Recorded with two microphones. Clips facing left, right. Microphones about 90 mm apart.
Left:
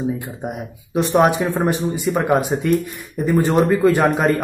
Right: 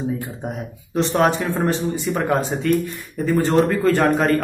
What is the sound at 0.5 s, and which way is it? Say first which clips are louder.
A man's voice: left 1 dB; 10° left (ahead or behind).